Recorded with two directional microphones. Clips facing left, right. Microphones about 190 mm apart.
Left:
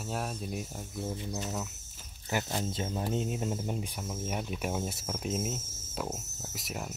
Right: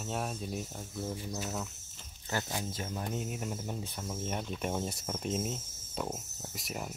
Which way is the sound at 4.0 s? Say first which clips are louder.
Left 1 dB; 5° left (ahead or behind).